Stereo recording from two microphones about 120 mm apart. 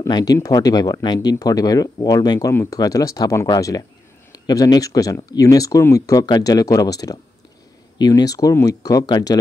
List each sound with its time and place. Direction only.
0.1 s speech: 30° left (ahead or behind)
2.5 s speech: 20° left (ahead or behind)